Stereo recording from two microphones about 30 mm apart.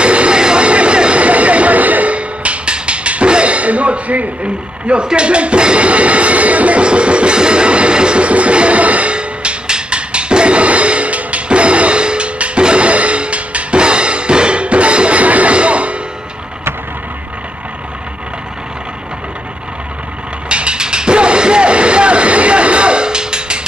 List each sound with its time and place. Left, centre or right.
0.0 s vehicle: right
0.4 s vehicle: right
0.7 s vehicle: right
1.2 s a sound: right
2.1 s music: right
5.0 s speech: right
5.9 s music: right
6.8 s music: right
9.1 s music: right
13.7 s music: right
20.4 s music: right